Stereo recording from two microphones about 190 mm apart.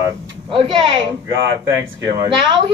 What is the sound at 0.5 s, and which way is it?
Speech, 30° right (ahead or behind).